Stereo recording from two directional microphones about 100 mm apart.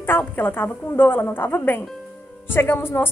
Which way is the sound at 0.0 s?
20° left (ahead or behind).